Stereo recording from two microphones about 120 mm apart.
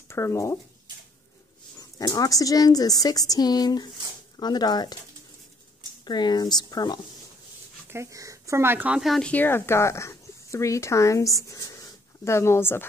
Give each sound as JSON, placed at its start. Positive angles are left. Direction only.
{"t": 0.1, "sound": "speech", "side_deg": 25}
{"t": 1.8, "sound": "speech", "side_deg": 30}
{"t": 6.0, "sound": "speech", "side_deg": 35}
{"t": 7.9, "sound": "speech", "side_deg": -25}
{"t": 9.0, "sound": "speech", "side_deg": 0}
{"t": 9.3, "sound": "speech", "side_deg": 15}